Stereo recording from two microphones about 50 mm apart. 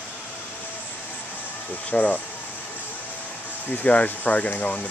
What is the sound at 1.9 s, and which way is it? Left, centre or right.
Speech, left.